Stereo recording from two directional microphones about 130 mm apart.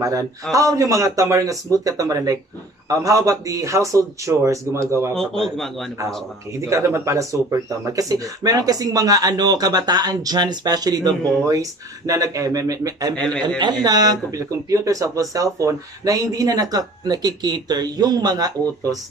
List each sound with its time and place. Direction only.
0.0 s speech: 25° right (ahead or behind)
5.4 s a man's voice: centre (ahead or behind)
6.6 s speech: 25° right (ahead or behind)
13.1 s a man's voice: 10° left (ahead or behind)
13.6 s speech: 30° right (ahead or behind)